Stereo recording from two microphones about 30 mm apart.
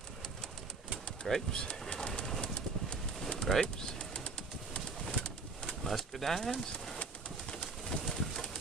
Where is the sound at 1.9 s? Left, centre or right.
Left.